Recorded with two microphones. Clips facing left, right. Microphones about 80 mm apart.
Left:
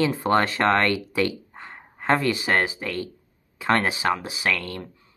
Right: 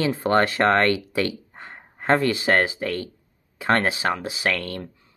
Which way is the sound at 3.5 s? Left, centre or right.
Right.